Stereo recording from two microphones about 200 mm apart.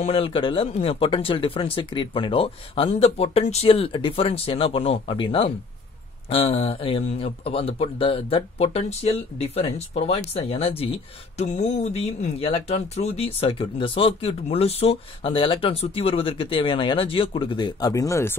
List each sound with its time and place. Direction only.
0.0 s speech: 30° left (ahead or behind)